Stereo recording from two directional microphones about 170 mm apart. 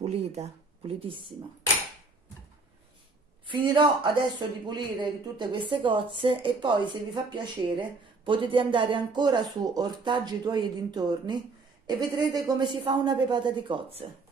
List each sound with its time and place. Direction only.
0.0 s speech: 40° right (ahead or behind)
3.4 s speech: 30° right (ahead or behind)